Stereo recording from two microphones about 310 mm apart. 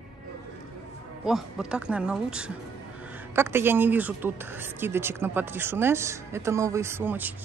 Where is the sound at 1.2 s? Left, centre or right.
Centre.